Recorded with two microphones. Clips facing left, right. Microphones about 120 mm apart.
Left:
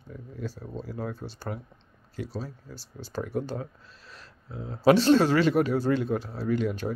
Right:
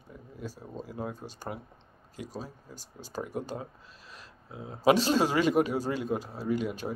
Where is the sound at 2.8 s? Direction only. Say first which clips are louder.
Left 4 dB; 45° right (ahead or behind).